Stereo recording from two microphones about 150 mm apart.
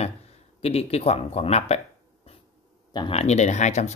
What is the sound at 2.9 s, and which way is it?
Speech, 30° left (ahead or behind).